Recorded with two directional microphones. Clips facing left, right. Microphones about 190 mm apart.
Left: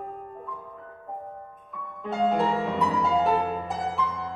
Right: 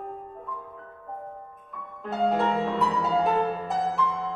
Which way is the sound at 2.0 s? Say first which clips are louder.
Even; centre (ahead or behind).